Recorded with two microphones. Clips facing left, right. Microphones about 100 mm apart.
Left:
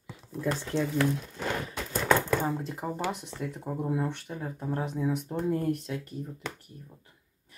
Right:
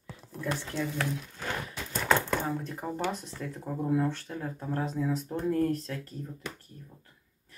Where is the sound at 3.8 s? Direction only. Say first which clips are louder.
Right 3 dB; 10° left (ahead or behind).